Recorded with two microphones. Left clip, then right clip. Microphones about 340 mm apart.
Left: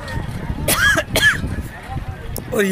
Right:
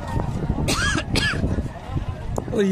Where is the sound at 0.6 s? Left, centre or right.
Centre.